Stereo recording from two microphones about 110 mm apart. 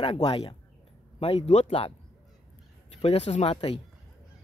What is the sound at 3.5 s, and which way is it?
Speech, 55° left (ahead or behind).